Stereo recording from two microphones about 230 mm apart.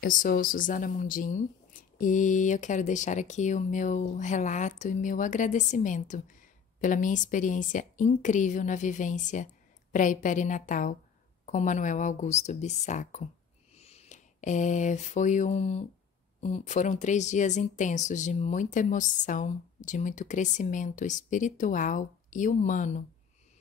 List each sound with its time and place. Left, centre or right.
0.0 s speech: left
13.7 s a sound: left
16.4 s speech: left